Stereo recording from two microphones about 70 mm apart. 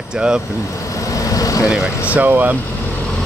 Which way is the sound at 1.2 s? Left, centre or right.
Left.